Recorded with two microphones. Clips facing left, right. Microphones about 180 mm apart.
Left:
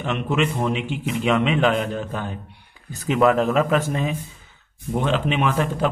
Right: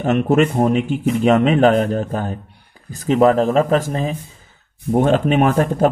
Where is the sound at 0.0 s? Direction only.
45° right (ahead or behind).